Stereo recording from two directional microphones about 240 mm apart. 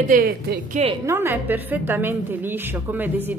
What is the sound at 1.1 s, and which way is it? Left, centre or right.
A woman's voice, centre.